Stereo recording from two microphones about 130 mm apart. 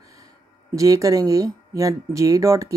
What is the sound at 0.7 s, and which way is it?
Speech, 25° right (ahead or behind).